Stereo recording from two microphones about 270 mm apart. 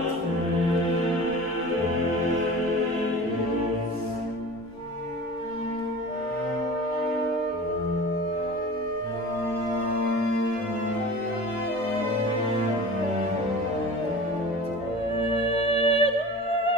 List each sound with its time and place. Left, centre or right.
15.5 s music: left